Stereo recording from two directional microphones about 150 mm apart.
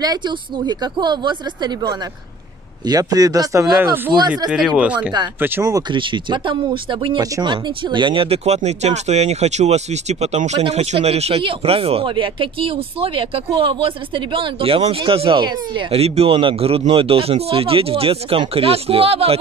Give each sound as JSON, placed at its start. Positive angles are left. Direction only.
{"t": 0.0, "sound": "speech", "side_deg": -30}
{"t": 4.5, "sound": "speech", "side_deg": -5}